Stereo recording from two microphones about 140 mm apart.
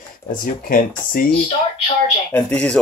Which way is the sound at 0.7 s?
90° left.